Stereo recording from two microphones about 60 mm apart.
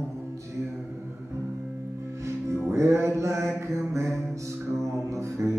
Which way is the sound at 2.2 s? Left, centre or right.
Right.